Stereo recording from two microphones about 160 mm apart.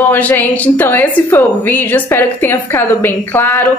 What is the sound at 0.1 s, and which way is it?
Speech, 10° left (ahead or behind).